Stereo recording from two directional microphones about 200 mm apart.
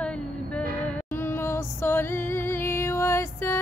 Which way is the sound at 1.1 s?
10° left (ahead or behind).